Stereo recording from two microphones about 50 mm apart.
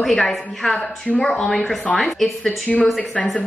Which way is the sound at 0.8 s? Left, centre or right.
Left.